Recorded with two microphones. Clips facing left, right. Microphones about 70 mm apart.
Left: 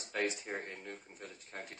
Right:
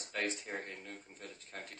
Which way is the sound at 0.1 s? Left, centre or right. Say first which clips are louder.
Left 2 dB; centre.